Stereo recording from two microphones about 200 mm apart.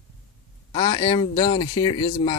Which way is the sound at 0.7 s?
20° left (ahead or behind).